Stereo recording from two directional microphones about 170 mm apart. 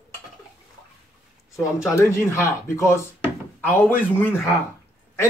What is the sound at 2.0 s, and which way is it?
Speech, 15° left (ahead or behind).